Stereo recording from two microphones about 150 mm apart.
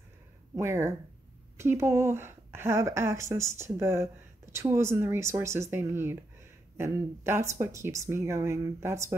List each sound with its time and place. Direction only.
1.6 s a woman's voice: 20° right (ahead or behind)